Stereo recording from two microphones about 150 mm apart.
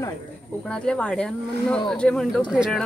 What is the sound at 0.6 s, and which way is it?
Speech, 5° left (ahead or behind).